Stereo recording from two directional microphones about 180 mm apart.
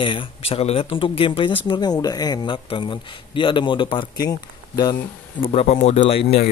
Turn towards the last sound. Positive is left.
turn(degrees=35)  # may be behind; listen again after turning